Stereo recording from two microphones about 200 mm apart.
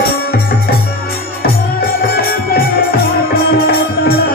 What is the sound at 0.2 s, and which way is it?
Music, 50° left (ahead or behind).